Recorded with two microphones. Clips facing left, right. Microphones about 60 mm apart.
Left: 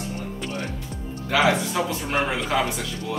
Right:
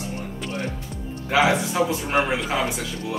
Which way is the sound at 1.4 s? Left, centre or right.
Centre.